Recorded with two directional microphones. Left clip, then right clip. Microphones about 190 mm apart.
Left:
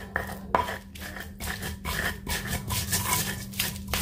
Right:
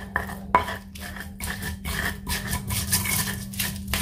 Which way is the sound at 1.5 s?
Centre (ahead or behind).